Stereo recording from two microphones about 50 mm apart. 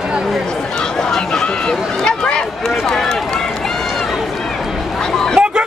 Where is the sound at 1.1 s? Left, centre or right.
Centre.